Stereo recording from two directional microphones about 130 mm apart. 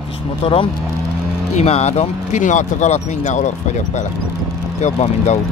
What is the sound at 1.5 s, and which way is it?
Speech, 55° left (ahead or behind).